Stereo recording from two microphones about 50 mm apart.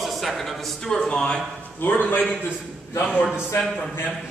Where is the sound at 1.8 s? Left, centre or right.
Left.